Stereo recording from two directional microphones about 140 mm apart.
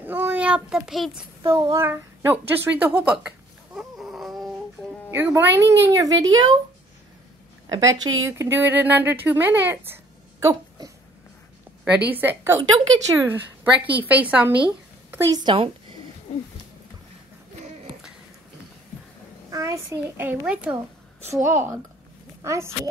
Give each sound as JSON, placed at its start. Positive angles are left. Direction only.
{"t": 0.0, "sound": "a child's voice", "side_deg": -15}
{"t": 1.5, "sound": "a child's voice", "side_deg": -20}
{"t": 5.1, "sound": "a woman's voice", "side_deg": -15}
{"t": 7.7, "sound": "a woman's voice", "side_deg": -25}
{"t": 10.4, "sound": "a sound", "side_deg": -25}
{"t": 11.8, "sound": "a woman's voice", "side_deg": -10}
{"t": 15.3, "sound": "a woman's voice", "side_deg": -35}
{"t": 16.3, "sound": "speech", "side_deg": 50}
{"t": 19.5, "sound": "a child's voice", "side_deg": -25}
{"t": 20.2, "sound": "a woman's voice", "side_deg": -10}